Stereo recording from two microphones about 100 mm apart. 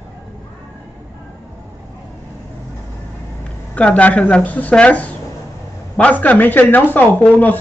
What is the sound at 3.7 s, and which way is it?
A man's voice, 10° left (ahead or behind).